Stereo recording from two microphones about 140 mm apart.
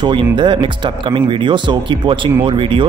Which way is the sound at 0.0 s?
35° right (ahead or behind).